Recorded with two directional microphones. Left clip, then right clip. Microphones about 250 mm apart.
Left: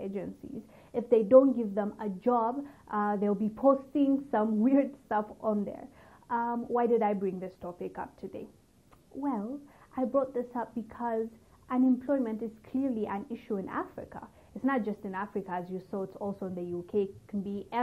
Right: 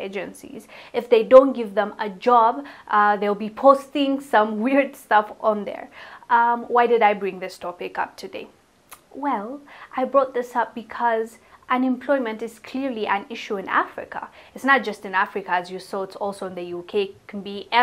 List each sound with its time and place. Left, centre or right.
0.0 s a woman's voice: centre
15.9 s speech: right
16.9 s a woman's voice: centre